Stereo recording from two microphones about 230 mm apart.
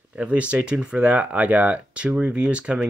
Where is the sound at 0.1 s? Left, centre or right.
Centre.